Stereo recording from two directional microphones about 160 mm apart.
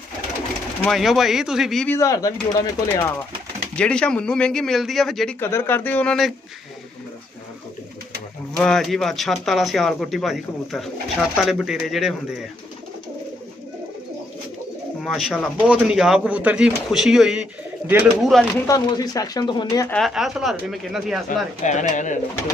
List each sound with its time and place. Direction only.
0.8 s speech: centre (ahead or behind)
1.9 s speech: 20° left (ahead or behind)
3.7 s speech: 5° left (ahead or behind)
5.4 s speech: 15° left (ahead or behind)
8.5 s speech: 5° left (ahead or behind)
15.0 s speech: centre (ahead or behind)
18.7 s speech: 25° left (ahead or behind)
20.1 s speech: 5° right (ahead or behind)
21.6 s speech: 50° left (ahead or behind)